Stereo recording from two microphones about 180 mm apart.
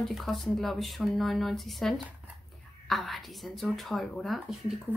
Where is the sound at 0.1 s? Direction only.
Centre (ahead or behind).